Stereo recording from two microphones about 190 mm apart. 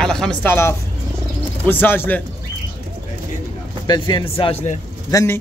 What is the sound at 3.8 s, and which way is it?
Speech, 20° left (ahead or behind).